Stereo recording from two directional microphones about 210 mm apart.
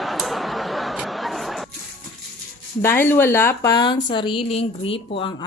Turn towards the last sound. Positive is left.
turn(degrees=25)  # may be behind; listen again after turning